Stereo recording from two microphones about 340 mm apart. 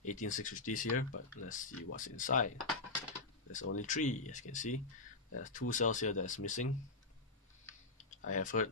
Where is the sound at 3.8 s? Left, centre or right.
Left.